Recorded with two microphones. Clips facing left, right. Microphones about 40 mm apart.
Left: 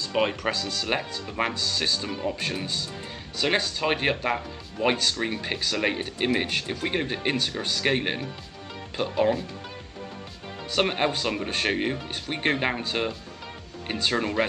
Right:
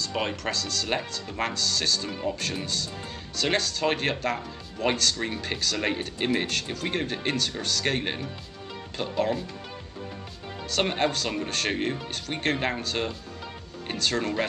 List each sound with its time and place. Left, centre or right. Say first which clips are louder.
0.0 s speech: left 4 dB; centre
10.7 s speech: left 1 dB; centre